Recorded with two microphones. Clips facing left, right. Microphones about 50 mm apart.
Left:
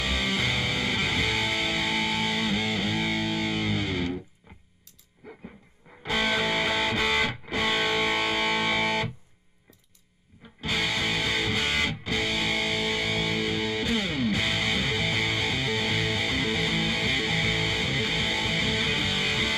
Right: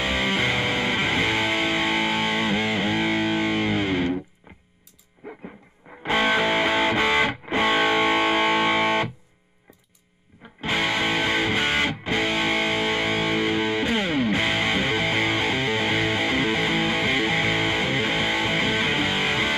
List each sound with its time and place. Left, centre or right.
0.0 s music: right
5.2 s music: right
10.6 s music: right